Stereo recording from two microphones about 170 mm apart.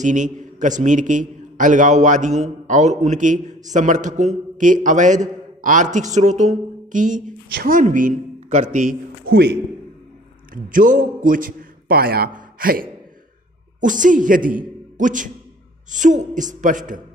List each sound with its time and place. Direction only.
0.0 s a man's voice: 45° right (ahead or behind)
10.5 s a man's voice: 55° right (ahead or behind)